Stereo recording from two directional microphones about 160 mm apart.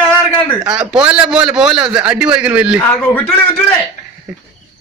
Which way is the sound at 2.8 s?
10° left (ahead or behind).